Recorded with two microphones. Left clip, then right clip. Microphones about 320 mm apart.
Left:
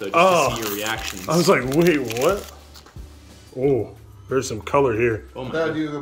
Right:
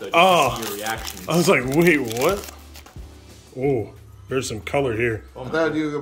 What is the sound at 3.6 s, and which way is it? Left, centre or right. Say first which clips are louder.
Speech: left 2 dB; centre.